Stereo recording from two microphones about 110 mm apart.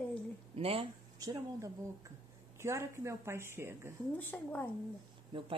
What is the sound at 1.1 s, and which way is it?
A woman's voice, 30° right (ahead or behind).